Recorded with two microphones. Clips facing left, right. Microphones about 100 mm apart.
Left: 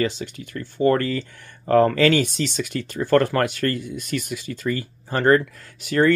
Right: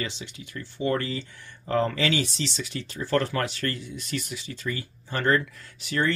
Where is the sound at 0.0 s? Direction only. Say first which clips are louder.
Left 10 dB; 50° left (ahead or behind).